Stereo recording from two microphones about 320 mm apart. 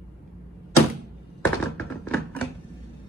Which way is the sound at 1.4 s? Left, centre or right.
Centre.